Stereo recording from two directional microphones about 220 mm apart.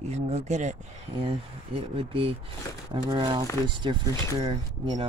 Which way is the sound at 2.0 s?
25° right (ahead or behind).